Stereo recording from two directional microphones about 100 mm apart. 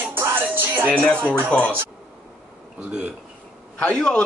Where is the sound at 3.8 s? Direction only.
10° left (ahead or behind).